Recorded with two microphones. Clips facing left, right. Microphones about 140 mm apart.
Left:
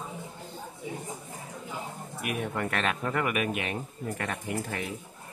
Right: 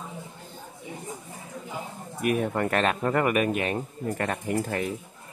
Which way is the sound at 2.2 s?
40° right (ahead or behind).